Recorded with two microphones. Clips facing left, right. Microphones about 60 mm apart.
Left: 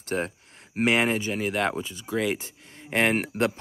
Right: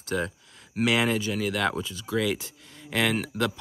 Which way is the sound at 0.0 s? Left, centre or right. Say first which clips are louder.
Even; left.